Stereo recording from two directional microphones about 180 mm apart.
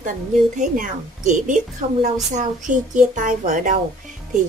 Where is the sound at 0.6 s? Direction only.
45° right (ahead or behind).